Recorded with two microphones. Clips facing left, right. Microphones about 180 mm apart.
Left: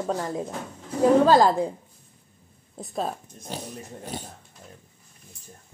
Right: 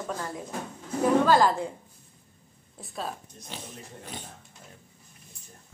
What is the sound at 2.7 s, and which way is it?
A woman's voice, 40° left (ahead or behind).